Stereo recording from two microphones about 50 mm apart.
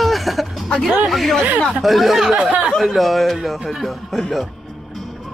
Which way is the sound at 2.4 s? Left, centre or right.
Centre.